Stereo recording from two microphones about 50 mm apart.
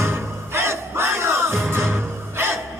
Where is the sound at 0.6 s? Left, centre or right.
Right.